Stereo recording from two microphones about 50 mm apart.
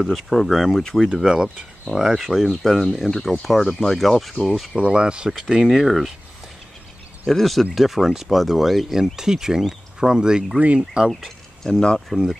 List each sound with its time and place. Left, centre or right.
0.1 s speech: centre
1.1 s speech: centre
4.7 s speech: right
5.3 s speech: centre
7.2 s speech: centre
10.6 s speech: right
11.1 s speech: centre
11.6 s speech: centre